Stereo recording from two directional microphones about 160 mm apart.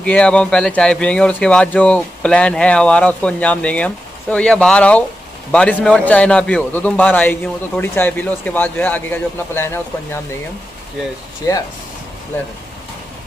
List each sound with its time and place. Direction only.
0.0 s speech: 5° left (ahead or behind)
11.4 s speech: 20° left (ahead or behind)